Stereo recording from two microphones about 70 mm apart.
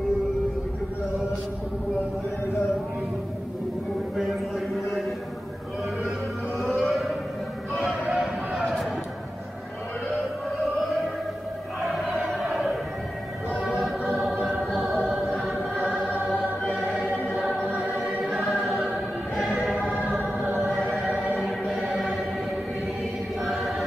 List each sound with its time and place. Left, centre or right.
6.8 s a sound: centre
11.9 s music: centre
16.3 s choir: centre
17.6 s choir: right
17.9 s choir: centre
18.9 s music: centre
20.2 s choir: right
20.5 s choir: centre
23.4 s choir: centre